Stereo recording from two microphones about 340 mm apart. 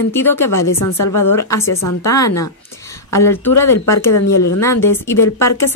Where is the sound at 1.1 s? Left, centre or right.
Left.